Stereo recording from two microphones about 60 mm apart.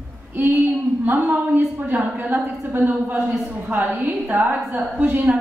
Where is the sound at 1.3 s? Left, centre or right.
Right.